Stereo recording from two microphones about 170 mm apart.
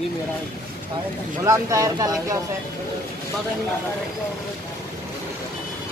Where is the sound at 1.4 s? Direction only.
20° right (ahead or behind).